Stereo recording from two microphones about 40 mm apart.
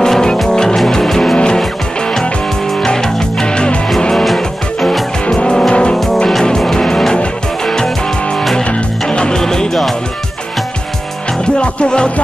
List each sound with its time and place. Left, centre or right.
0.0 s music: centre
2.8 s music: centre
4.1 s music: centre
4.4 s music: centre
5.3 s vehicle: centre
6.1 s music: centre
9.1 s music: left
9.4 s music: centre
11.5 s music: left